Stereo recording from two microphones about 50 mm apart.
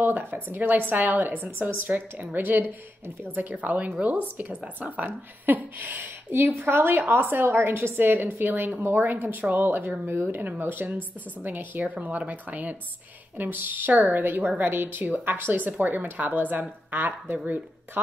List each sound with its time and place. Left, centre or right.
0.1 s speech: right